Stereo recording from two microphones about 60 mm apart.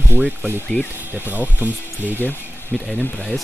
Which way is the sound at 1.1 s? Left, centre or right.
Right.